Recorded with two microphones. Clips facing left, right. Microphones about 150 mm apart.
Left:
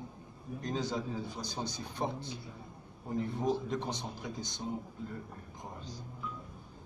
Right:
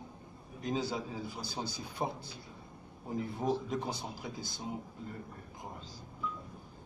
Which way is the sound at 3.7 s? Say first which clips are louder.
Even; 5° right (ahead or behind).